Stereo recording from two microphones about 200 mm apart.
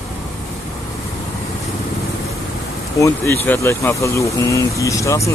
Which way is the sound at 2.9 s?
15° left (ahead or behind).